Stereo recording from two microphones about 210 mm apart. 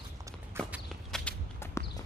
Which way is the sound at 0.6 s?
10° right (ahead or behind).